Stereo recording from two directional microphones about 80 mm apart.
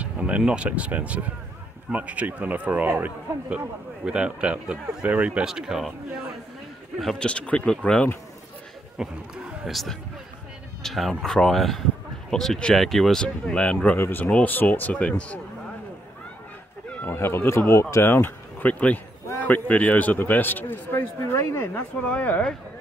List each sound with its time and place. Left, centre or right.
0.0 s speech: centre
7.0 s speech: centre
7.2 s speech: centre
8.9 s a man's voice: centre
13.9 s speech: left
17.0 s speech: left
22.0 s speech: centre